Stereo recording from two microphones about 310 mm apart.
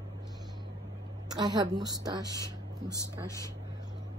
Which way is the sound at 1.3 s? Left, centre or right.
Centre.